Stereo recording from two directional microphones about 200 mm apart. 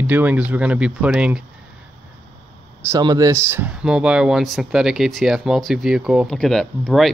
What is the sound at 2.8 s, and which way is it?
Speech, 15° right (ahead or behind).